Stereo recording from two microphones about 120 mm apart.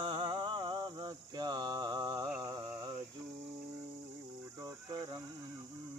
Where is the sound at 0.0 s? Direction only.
45° right (ahead or behind).